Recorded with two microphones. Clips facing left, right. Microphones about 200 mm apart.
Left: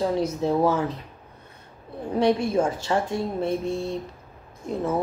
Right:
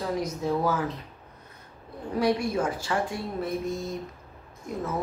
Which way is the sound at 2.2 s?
25° left (ahead or behind).